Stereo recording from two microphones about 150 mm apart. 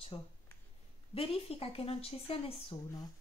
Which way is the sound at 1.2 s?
40° left (ahead or behind).